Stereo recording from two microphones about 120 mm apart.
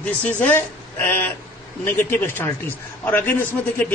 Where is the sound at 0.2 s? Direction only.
15° left (ahead or behind).